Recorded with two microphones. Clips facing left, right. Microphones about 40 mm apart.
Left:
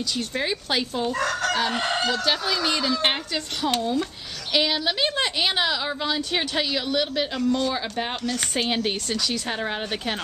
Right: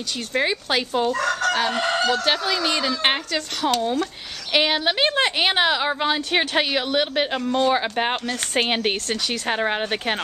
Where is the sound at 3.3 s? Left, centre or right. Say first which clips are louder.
Right 3 dB; right.